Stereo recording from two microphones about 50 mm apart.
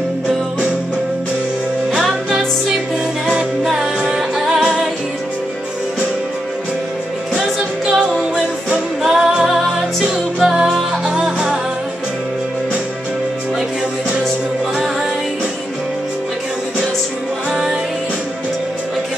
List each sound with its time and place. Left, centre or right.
3.6 s music: centre
7.3 s music: centre